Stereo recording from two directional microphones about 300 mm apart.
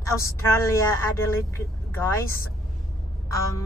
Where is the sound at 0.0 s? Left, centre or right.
Centre.